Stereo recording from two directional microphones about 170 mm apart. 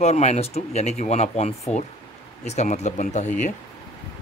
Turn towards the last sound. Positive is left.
turn(degrees=45)  # may be behind; listen again after turning